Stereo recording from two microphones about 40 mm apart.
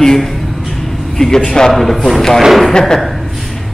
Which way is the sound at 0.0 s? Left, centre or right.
Centre.